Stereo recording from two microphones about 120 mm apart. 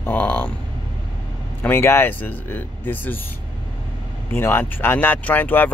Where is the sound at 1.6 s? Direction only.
20° left (ahead or behind).